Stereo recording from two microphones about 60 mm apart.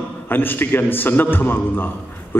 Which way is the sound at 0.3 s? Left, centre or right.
Left.